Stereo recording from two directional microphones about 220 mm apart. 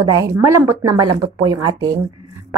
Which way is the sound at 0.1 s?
15° right (ahead or behind).